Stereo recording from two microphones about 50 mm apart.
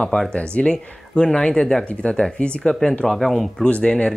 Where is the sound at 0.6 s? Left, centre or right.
Left.